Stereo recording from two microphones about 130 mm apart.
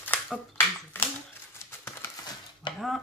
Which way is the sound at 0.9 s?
15° left (ahead or behind).